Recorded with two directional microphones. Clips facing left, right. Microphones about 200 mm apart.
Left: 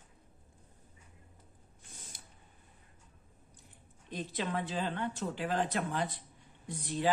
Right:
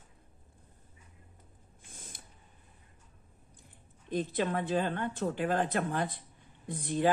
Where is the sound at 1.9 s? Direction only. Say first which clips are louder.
Right 3 dB; 50° right (ahead or behind).